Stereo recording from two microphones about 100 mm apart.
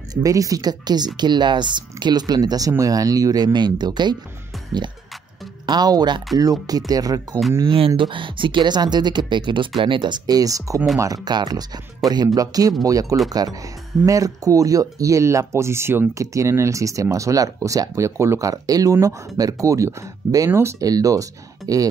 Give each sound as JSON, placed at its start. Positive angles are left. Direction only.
{"t": 0.1, "sound": "speech", "side_deg": -35}
{"t": 5.7, "sound": "speech", "side_deg": -40}
{"t": 7.6, "sound": "speech", "side_deg": -60}